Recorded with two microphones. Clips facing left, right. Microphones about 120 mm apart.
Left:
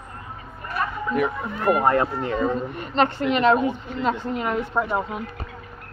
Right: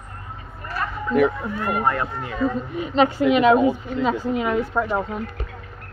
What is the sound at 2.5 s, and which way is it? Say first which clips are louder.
A woman's voice: right 3 dB; 5° right (ahead or behind).